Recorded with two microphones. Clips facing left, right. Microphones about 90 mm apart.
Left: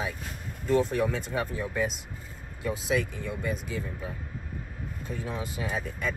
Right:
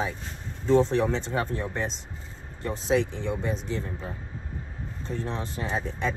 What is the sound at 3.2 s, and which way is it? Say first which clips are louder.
Speech: right 4 dB; 65° right (ahead or behind).